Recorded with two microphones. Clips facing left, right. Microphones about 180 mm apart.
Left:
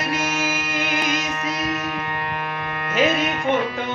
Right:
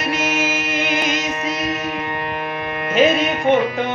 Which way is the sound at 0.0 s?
20° right (ahead or behind).